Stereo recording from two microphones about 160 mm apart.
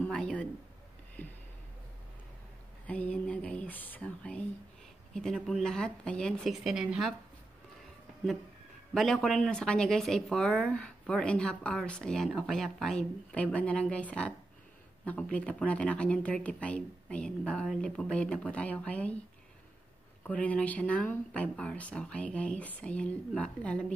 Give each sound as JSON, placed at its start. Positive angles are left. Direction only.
{"t": 0.0, "sound": "a sound", "side_deg": 5}
{"t": 2.9, "sound": "a woman's voice", "side_deg": 10}
{"t": 8.9, "sound": "a woman's voice", "side_deg": 0}
{"t": 20.2, "sound": "a woman's voice", "side_deg": 10}